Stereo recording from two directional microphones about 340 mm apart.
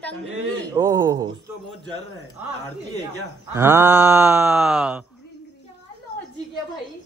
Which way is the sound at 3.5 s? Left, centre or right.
Centre.